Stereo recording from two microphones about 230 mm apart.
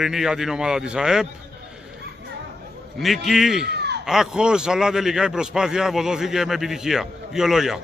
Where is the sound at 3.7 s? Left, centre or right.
Right.